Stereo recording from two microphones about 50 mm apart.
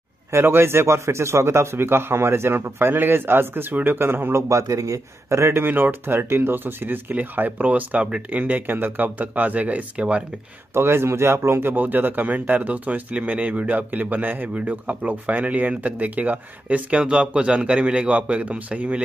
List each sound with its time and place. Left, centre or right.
0.3 s a man's voice: right
5.7 s speech: right
10.7 s a man's voice: right
11.7 s speech: right